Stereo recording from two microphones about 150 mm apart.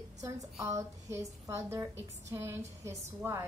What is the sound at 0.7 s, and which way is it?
Speech, 20° right (ahead or behind).